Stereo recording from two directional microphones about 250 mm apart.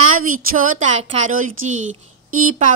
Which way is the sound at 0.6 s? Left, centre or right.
Right.